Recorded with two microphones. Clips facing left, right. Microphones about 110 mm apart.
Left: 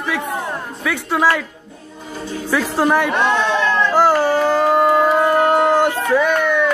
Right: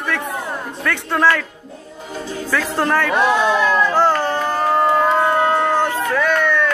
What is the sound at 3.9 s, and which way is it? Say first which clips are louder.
Music: left 3 dB; 10° left (ahead or behind).